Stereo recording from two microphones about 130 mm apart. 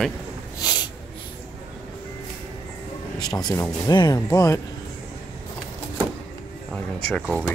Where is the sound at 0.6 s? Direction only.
30° left (ahead or behind).